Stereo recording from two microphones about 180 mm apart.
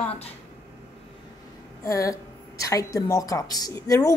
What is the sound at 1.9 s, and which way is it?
A woman's voice, 20° left (ahead or behind).